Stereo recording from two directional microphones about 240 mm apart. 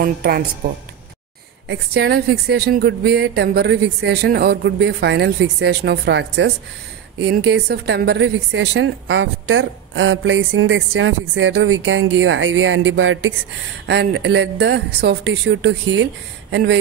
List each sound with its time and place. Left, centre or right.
0.0 s a woman's voice: right
1.7 s a woman's voice: right